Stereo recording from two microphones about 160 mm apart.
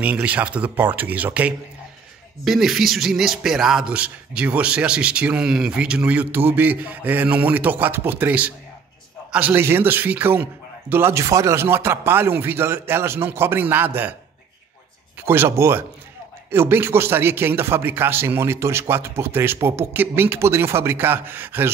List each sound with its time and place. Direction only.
0.0 s a man's voice: 10° right (ahead or behind)
15.2 s a man's voice: 15° right (ahead or behind)